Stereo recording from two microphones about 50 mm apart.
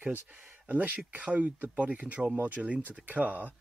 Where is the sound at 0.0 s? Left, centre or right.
Right.